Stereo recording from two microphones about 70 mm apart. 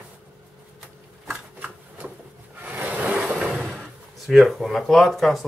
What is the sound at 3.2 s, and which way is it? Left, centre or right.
Vehicle, centre.